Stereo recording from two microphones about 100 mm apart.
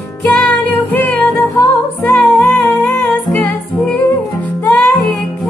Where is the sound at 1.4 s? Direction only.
30° left (ahead or behind).